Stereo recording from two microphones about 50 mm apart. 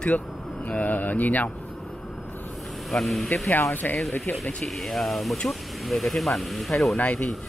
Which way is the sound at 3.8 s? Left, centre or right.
Left.